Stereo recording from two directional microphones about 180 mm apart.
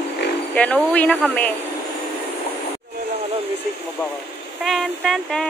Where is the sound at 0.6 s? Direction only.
5° left (ahead or behind).